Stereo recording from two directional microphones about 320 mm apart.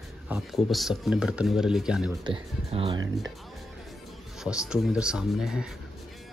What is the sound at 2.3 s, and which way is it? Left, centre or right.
Speech, centre.